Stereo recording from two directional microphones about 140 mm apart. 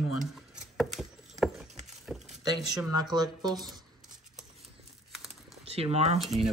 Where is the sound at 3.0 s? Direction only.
30° right (ahead or behind).